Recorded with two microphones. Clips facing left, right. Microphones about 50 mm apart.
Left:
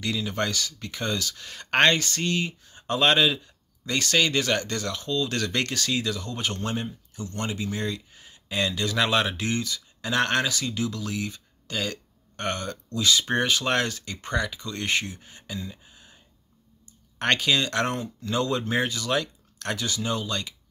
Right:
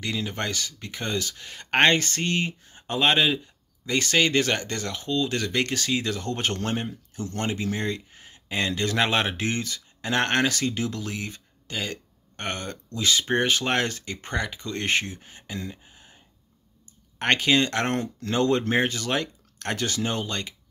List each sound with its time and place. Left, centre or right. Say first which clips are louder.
0.0 s speech: left 2 dB; right
15.7 s a sound: right 2 dB; right
17.2 s speech: right 2 dB; right
17.9 s speech: right 4 dB; right
18.3 s speech: right 3 dB; right